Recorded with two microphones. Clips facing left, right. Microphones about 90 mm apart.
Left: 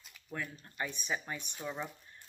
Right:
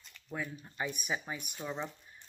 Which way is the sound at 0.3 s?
10° right (ahead or behind).